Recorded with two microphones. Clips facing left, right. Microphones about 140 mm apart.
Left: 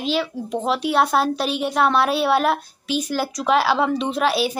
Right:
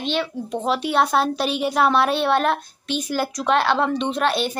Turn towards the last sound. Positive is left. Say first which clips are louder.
# left 1 dB
turn(degrees=5)  # may be behind; listen again after turning